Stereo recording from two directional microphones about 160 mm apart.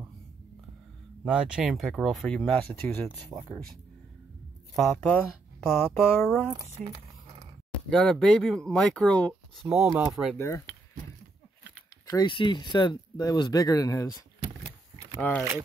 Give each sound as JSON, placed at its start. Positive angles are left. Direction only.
{"t": 1.2, "sound": "speech", "side_deg": -5}
{"t": 4.7, "sound": "speech", "side_deg": 5}
{"t": 9.7, "sound": "speech", "side_deg": -5}
{"t": 10.3, "sound": "speech", "side_deg": 15}
{"t": 12.2, "sound": "speech", "side_deg": 30}
{"t": 15.1, "sound": "speech", "side_deg": 10}